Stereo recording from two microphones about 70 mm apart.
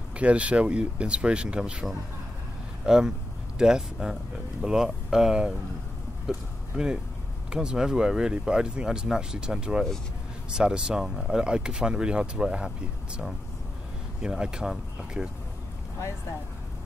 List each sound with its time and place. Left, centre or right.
0.1 s speech: centre